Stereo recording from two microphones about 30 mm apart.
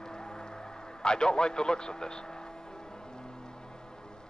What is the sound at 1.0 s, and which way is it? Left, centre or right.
Speech, left.